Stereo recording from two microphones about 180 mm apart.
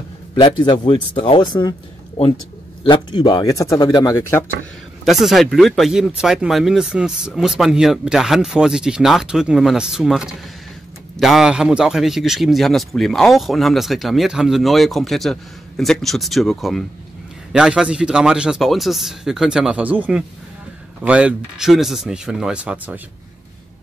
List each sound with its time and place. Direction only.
0.4 s speech: 25° left (ahead or behind)
2.8 s speech: 25° left (ahead or behind)
5.0 s speech: centre (ahead or behind)
21.0 s speech: 5° right (ahead or behind)